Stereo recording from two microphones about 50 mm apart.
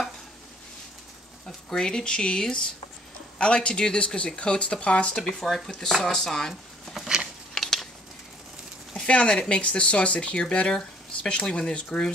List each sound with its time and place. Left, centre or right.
1.7 s speech: centre
5.1 s speech: centre
7.5 s a sound: centre
8.9 s speech: left